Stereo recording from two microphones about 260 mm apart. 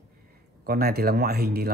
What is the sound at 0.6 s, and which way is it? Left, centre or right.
A man's voice, right.